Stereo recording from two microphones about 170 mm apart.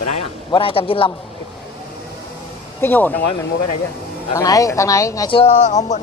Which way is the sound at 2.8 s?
10° left (ahead or behind).